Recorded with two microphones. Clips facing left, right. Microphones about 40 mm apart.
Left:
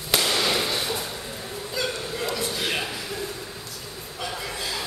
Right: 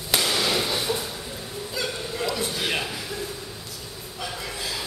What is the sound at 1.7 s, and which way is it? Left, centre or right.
Hiccup, centre.